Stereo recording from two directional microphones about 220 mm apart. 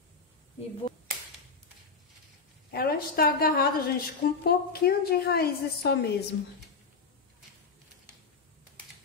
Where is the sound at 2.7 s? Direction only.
45° left (ahead or behind).